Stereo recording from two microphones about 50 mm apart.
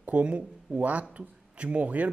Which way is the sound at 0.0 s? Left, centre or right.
Right.